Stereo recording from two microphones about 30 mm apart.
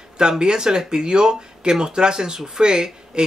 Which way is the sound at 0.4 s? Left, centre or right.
Right.